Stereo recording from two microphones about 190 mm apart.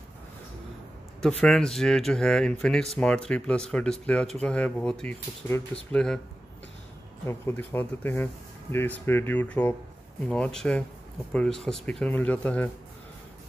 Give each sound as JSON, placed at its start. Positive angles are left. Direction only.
{"t": 1.4, "sound": "speech", "side_deg": 0}
{"t": 7.2, "sound": "speech", "side_deg": 10}